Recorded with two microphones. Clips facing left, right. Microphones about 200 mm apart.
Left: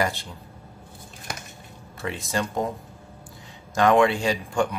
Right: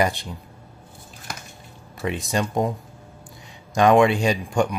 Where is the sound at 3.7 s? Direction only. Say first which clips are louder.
Right 3 dB; 15° right (ahead or behind).